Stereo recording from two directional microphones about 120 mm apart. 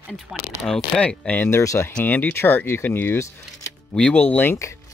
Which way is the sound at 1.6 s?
25° left (ahead or behind).